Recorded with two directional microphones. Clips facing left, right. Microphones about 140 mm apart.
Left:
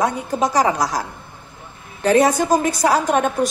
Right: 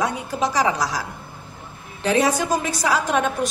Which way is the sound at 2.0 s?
45° left (ahead or behind).